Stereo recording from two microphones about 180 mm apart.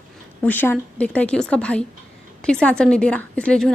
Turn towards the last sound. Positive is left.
turn(degrees=5)  # may be behind; listen again after turning